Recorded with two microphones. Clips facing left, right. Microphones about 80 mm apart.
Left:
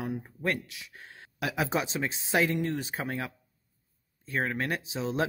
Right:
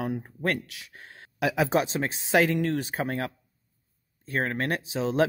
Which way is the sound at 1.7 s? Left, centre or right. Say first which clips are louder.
Right 5 dB; right.